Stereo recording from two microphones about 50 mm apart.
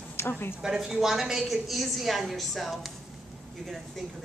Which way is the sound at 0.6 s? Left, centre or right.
Centre.